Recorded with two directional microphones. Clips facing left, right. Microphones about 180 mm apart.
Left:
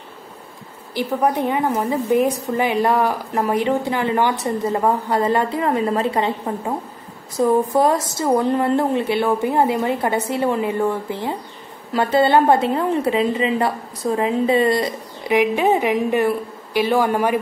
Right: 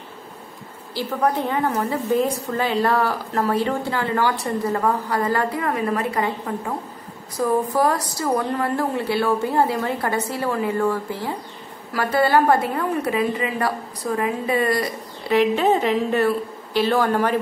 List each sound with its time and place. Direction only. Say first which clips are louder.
0.9 s a woman's voice: left 2 dB; 15° left (ahead or behind)